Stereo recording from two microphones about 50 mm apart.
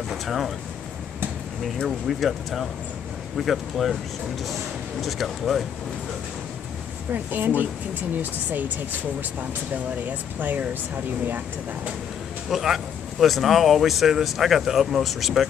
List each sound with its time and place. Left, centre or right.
0.1 s speech: centre
1.9 s speech: centre
5.0 s speech: centre
7.1 s speech: right
10.4 s speech: right
12.4 s speech: centre